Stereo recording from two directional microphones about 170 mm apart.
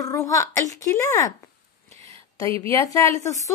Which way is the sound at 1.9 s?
35° right (ahead or behind).